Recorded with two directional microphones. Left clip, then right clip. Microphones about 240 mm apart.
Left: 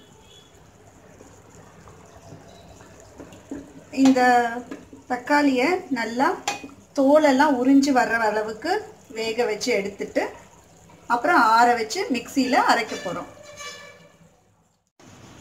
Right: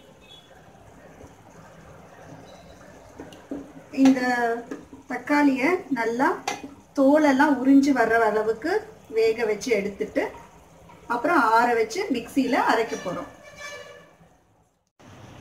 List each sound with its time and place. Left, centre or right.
3.9 s a woman's voice: left